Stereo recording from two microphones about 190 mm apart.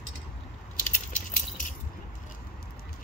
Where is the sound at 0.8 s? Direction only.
45° left (ahead or behind).